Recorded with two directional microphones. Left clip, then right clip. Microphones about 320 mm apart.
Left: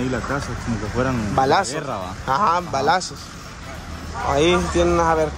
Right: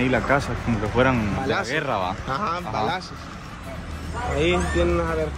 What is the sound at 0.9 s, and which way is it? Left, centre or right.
Speech, centre.